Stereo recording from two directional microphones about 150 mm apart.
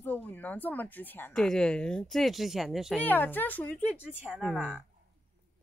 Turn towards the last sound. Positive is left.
turn(degrees=-5)  # may be behind; listen again after turning